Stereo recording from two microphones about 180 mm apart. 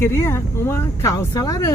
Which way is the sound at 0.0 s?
15° left (ahead or behind).